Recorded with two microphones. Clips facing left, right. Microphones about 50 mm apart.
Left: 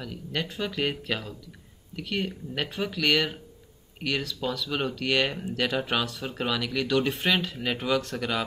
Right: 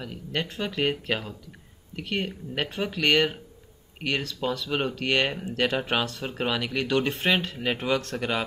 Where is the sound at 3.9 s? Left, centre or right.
Centre.